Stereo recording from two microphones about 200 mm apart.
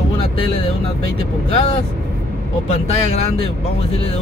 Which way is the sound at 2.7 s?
30° left (ahead or behind).